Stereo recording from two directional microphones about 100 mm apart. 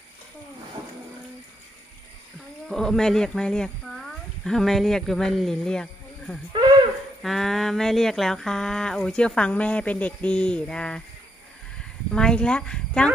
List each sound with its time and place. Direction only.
2.7 s speech: 5° left (ahead or behind)
6.5 s owl: 50° right (ahead or behind)
7.2 s speech: centre (ahead or behind)